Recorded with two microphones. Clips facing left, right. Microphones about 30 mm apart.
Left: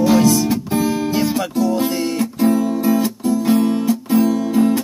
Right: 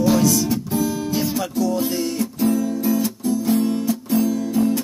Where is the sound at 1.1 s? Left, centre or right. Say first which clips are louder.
Left 4 dB; centre.